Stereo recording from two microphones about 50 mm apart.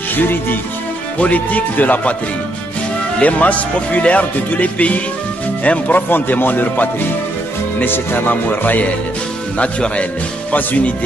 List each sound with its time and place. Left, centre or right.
0.1 s speech: left
1.1 s speech: left
3.2 s speech: left
9.6 s speech: left